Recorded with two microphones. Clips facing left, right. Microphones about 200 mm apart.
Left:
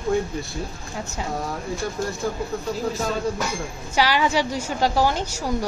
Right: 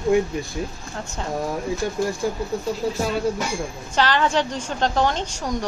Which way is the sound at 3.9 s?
10° left (ahead or behind).